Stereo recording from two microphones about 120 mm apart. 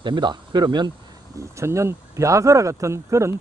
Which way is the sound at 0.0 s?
40° right (ahead or behind).